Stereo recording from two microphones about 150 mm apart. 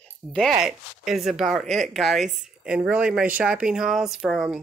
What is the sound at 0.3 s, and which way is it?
Speech, centre (ahead or behind).